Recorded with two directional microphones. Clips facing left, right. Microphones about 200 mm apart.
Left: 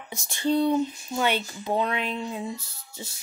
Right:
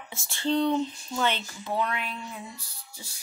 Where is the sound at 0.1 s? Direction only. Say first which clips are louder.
Left 3 dB; 15° left (ahead or behind).